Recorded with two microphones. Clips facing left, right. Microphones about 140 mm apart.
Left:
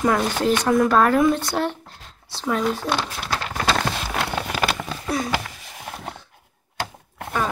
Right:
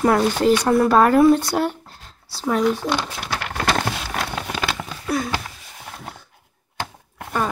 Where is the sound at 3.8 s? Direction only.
5° right (ahead or behind).